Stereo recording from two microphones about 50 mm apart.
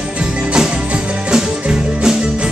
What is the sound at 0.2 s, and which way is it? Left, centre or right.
Music, centre.